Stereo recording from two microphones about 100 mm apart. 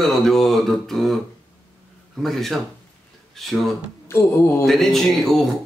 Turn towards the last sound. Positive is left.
turn(degrees=0)  # may be behind; listen again after turning